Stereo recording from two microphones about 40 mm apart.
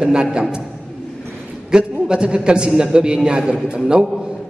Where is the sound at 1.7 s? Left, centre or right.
Right.